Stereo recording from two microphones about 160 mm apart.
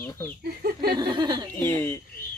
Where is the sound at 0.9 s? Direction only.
25° right (ahead or behind).